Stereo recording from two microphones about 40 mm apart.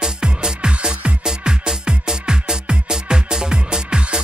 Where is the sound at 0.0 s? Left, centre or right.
Centre.